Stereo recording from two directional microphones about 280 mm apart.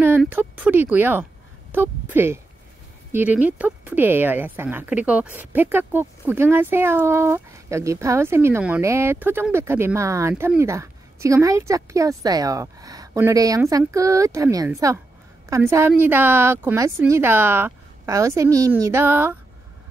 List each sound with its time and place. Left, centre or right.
0.0 s speech: centre